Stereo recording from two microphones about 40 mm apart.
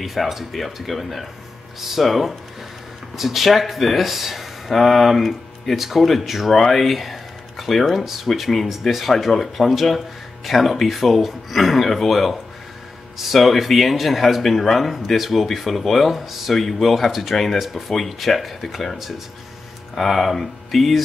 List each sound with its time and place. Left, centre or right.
0.0 s speech: centre
9.1 s speech: centre
16.5 s speech: centre
20.0 s speech: centre